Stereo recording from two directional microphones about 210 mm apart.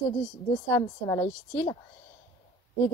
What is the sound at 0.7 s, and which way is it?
A woman's voice, 10° left (ahead or behind).